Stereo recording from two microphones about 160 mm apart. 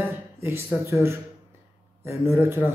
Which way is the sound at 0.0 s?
15° right (ahead or behind).